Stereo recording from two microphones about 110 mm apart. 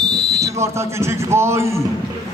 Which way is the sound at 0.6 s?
25° right (ahead or behind).